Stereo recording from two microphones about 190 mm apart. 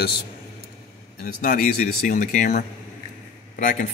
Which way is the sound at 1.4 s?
45° left (ahead or behind).